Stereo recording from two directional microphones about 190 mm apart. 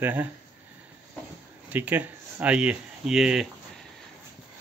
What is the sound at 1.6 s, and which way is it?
Speech, 10° right (ahead or behind).